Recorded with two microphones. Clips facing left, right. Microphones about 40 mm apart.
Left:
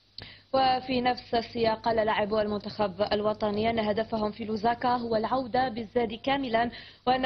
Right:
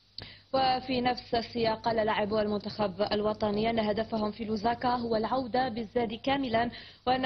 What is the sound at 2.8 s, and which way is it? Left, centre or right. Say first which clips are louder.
A woman's voice: left 2 dB; centre.